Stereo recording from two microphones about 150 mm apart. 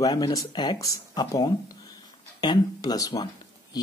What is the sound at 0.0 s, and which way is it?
Speech, 25° left (ahead or behind).